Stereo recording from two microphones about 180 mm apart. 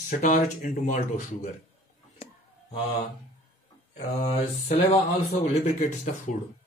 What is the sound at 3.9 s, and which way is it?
Speech, 35° left (ahead or behind).